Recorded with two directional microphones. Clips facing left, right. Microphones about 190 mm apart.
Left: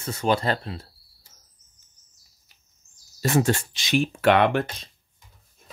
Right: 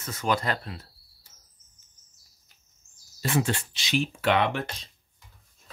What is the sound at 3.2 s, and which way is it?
Speech, 45° left (ahead or behind).